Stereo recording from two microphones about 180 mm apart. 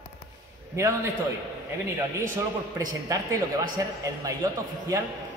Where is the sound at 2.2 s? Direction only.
15° right (ahead or behind).